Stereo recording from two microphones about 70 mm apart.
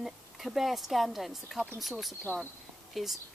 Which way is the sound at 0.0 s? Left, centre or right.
Centre.